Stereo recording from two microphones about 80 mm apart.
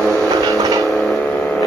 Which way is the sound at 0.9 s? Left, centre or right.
Centre.